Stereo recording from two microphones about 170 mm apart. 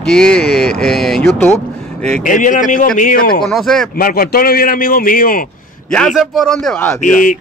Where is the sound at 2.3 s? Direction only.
50° left (ahead or behind).